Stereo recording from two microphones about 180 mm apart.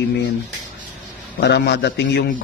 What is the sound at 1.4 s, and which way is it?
Speech, 70° left (ahead or behind).